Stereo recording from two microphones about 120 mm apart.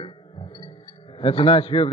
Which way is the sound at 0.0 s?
45° left (ahead or behind).